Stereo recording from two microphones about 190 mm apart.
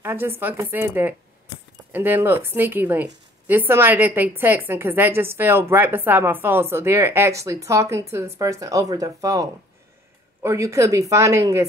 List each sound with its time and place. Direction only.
0.0 s speech: 10° right (ahead or behind)